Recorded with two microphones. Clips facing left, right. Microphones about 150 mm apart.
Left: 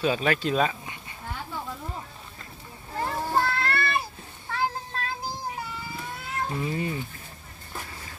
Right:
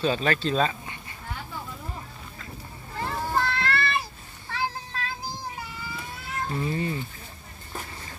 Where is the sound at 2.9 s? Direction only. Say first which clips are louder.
Left 1 dB; 40° left (ahead or behind).